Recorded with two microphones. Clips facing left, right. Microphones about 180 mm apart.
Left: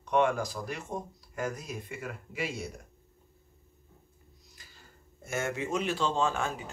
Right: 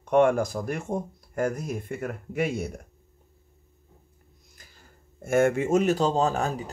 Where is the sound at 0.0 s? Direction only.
50° right (ahead or behind).